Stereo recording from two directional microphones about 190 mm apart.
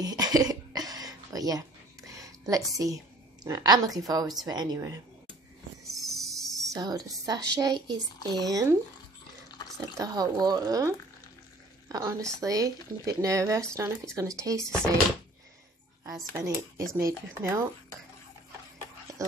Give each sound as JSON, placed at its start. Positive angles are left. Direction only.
{"t": 0.0, "sound": "throat clearing", "side_deg": -20}
{"t": 3.4, "sound": "speech", "side_deg": -20}
{"t": 5.9, "sound": "a sound", "side_deg": 0}
{"t": 6.7, "sound": "speech", "side_deg": -20}
{"t": 9.9, "sound": "a woman's voice", "side_deg": -20}
{"t": 16.1, "sound": "speech", "side_deg": -15}